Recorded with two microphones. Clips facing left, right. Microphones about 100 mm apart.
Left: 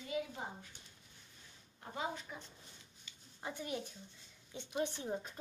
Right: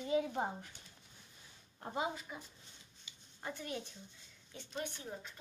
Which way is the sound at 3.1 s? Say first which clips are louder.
Right 1 dB; 15° right (ahead or behind).